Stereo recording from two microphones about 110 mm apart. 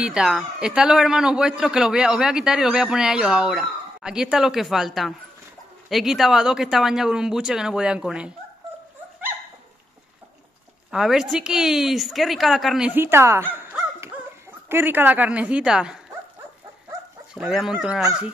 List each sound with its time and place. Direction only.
0.0 s a man's voice: 5° right (ahead or behind)
10.9 s a man's voice: 5° right (ahead or behind)
12.9 s a woman's voice: 20° right (ahead or behind); by 16.0 s 5° right (ahead or behind)
17.3 s a man's voice: 5° right (ahead or behind)